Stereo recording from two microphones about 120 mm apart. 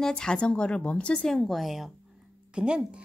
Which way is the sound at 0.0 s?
5° left (ahead or behind).